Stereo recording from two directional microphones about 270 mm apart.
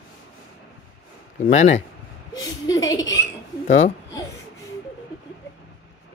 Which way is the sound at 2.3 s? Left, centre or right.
Centre.